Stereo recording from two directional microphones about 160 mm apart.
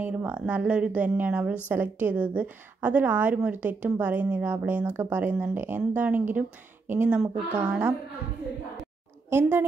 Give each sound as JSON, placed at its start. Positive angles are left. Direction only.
{"t": 0.0, "sound": "a woman's voice", "side_deg": -10}
{"t": 9.3, "sound": "a woman's voice", "side_deg": -10}